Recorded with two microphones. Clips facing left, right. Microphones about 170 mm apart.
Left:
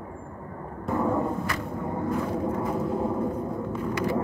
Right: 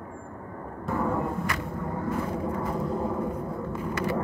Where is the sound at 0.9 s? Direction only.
15° left (ahead or behind).